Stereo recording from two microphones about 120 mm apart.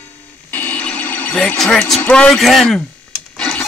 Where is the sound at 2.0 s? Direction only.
10° left (ahead or behind).